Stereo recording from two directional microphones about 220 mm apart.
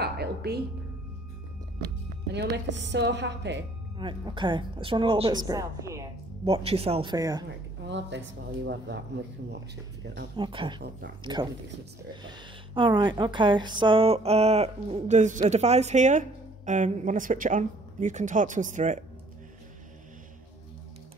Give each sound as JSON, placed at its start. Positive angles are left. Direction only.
{"t": 0.0, "sound": "music", "side_deg": -45}
{"t": 2.2, "sound": "a woman's voice", "side_deg": -50}
{"t": 4.0, "sound": "speech", "side_deg": -20}
{"t": 6.4, "sound": "speech", "side_deg": -25}
{"t": 7.8, "sound": "a woman's voice", "side_deg": -55}
{"t": 10.3, "sound": "speech", "side_deg": -20}
{"t": 12.2, "sound": "speech", "side_deg": -20}